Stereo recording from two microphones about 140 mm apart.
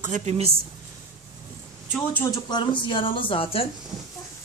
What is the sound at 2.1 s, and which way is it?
Speech, 20° left (ahead or behind).